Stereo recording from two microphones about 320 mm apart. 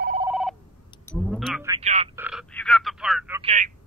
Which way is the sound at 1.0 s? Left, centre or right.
Centre.